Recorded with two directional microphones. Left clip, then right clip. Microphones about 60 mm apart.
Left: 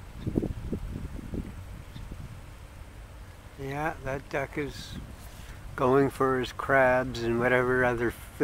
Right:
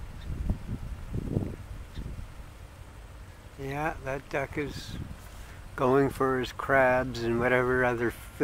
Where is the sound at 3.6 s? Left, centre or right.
Centre.